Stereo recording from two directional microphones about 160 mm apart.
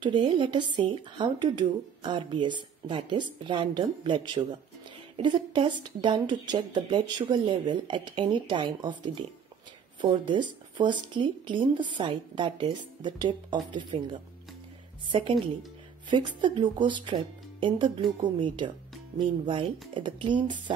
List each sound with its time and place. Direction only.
0.0 s a woman's voice: 30° right (ahead or behind)
10.2 s a woman's voice: 30° right (ahead or behind)